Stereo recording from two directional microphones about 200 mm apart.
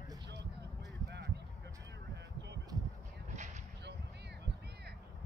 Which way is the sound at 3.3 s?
35° right (ahead or behind).